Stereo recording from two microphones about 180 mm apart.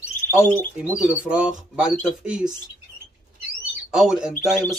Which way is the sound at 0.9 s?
5° right (ahead or behind).